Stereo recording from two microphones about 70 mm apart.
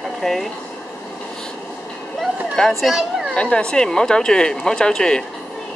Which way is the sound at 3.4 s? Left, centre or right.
Centre.